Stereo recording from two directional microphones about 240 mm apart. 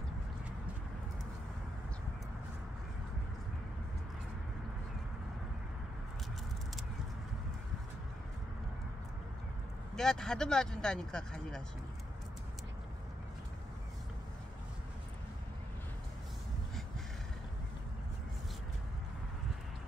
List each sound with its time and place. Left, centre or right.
9.9 s speech: centre